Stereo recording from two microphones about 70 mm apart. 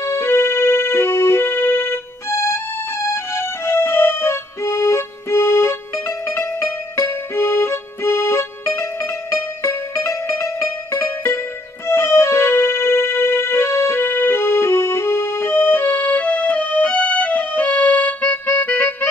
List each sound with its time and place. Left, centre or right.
0.0 s music: left